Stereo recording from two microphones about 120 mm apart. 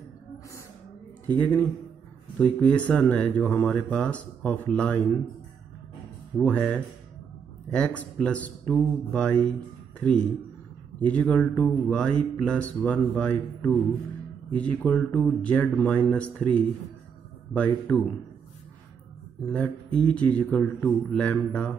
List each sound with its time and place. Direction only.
1.4 s speech: 10° left (ahead or behind)
6.3 s speech: 10° left (ahead or behind)
17.9 s speech: 10° left (ahead or behind)
19.4 s speech: 10° left (ahead or behind)